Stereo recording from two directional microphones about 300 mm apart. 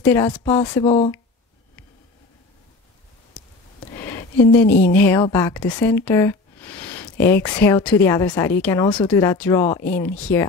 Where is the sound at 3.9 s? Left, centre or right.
Centre.